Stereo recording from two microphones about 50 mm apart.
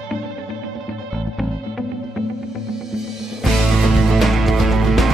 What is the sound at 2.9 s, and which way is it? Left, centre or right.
Music, centre.